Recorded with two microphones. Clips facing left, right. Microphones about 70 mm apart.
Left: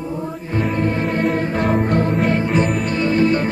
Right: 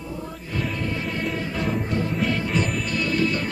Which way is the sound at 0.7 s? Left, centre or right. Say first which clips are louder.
Left 8 dB; left.